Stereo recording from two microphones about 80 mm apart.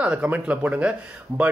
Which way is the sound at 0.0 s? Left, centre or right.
Centre.